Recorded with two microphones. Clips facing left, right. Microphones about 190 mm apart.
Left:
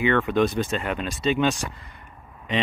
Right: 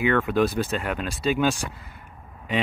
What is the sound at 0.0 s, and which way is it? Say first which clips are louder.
Speech: left 1 dB; 5° right (ahead or behind).